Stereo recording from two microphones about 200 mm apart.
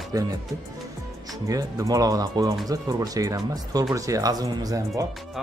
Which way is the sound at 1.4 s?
15° right (ahead or behind).